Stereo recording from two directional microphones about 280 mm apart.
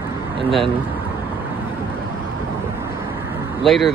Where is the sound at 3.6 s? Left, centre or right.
Centre.